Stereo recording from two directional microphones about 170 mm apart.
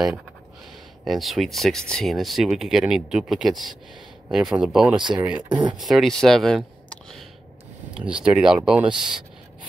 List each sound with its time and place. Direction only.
1.0 s speech: centre (ahead or behind)
5.5 s speech: 25° right (ahead or behind)
5.8 s speech: centre (ahead or behind)